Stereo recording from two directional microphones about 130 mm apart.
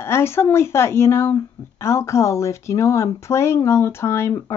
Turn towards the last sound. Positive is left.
turn(degrees=20)  # may be behind; listen again after turning